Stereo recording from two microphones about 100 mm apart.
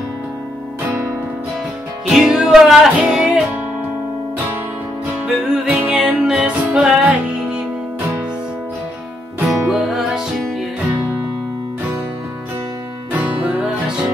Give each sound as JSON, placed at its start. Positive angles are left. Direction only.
{"t": 2.0, "sound": "music", "side_deg": -5}
{"t": 5.2, "sound": "music", "side_deg": -15}
{"t": 9.7, "sound": "music", "side_deg": 0}
{"t": 13.2, "sound": "music", "side_deg": -15}